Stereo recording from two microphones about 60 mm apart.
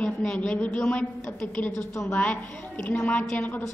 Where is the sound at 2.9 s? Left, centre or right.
Left.